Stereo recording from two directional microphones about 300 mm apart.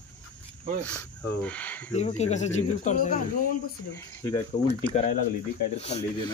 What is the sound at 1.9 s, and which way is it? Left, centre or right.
Speech, left.